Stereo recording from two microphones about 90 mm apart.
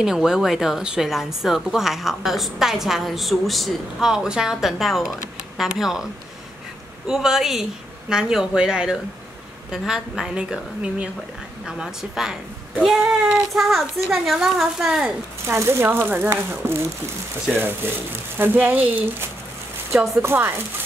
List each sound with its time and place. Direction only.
0.0 s a woman's voice: 5° right (ahead or behind)
7.1 s a woman's voice: 5° right (ahead or behind)
13.5 s a woman's voice: centre (ahead or behind)
15.4 s speech: 25° right (ahead or behind)